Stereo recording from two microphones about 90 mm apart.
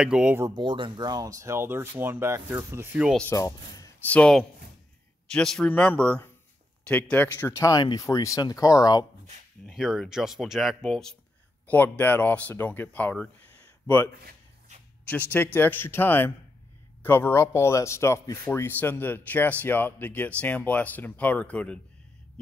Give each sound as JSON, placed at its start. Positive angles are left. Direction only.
{"t": 0.0, "sound": "speech", "side_deg": -10}
{"t": 0.6, "sound": "speech", "side_deg": -65}
{"t": 3.3, "sound": "speech", "side_deg": 40}
{"t": 4.0, "sound": "speech", "side_deg": 15}
{"t": 7.3, "sound": "speech", "side_deg": 35}
{"t": 9.7, "sound": "speech", "side_deg": 0}
{"t": 11.6, "sound": "speech", "side_deg": 20}
{"t": 15.3, "sound": "speech", "side_deg": 20}